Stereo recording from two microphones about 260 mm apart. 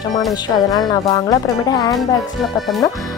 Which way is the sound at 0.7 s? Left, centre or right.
Centre.